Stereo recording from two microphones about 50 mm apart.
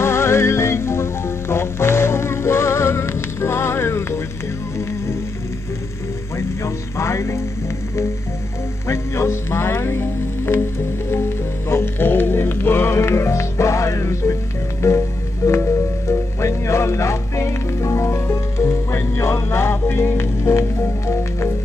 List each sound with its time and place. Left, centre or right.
0.0 s music: left
6.3 s music: left
8.8 s music: left